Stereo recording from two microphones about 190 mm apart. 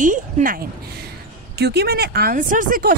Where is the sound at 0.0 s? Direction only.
45° right (ahead or behind).